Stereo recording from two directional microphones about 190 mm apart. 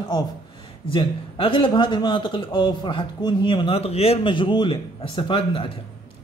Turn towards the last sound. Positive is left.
turn(degrees=30)  # may be behind; listen again after turning